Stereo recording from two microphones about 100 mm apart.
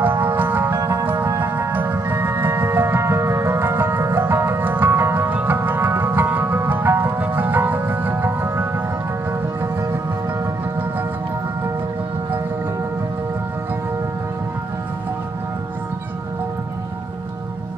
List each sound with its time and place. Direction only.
0.0 s music: 20° right (ahead or behind)
0.7 s music: 30° right (ahead or behind)